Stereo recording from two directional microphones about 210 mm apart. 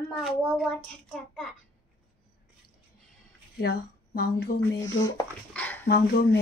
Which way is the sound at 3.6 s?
45° left (ahead or behind).